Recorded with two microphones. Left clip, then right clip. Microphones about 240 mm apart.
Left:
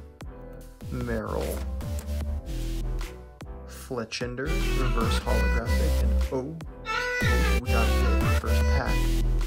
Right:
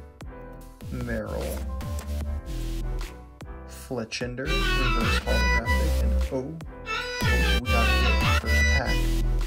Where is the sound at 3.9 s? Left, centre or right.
Centre.